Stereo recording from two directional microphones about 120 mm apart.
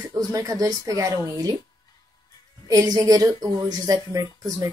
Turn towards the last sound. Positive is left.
turn(degrees=-25)  # may be behind; listen again after turning